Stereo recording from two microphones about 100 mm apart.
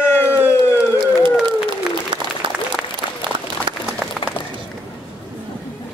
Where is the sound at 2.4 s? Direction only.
55° right (ahead or behind).